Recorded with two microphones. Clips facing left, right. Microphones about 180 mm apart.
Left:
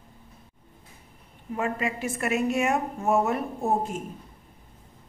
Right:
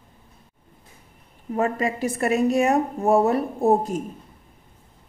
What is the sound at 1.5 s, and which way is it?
A woman's voice, 40° right (ahead or behind).